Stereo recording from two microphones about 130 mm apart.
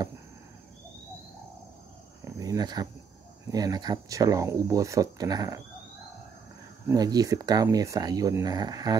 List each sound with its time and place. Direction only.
2.2 s cricket: 30° right (ahead or behind)
3.4 s speech: 30° right (ahead or behind)
6.9 s speech: 30° right (ahead or behind)